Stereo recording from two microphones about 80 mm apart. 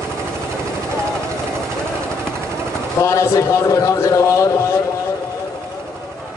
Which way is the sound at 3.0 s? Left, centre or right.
Left.